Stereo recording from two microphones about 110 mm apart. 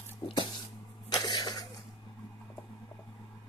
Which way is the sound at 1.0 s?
35° left (ahead or behind).